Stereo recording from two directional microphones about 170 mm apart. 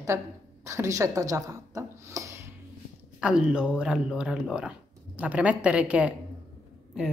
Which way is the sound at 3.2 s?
5° right (ahead or behind).